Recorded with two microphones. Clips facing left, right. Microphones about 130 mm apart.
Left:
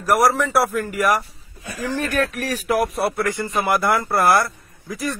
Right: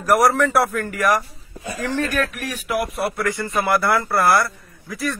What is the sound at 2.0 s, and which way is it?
Speech, 20° left (ahead or behind).